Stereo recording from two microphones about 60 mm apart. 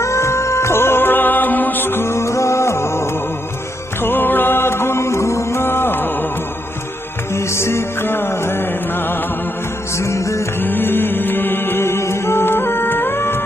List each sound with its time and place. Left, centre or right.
0.0 s music: left
4.0 s music: left
7.3 s music: left
9.9 s music: left
10.6 s music: left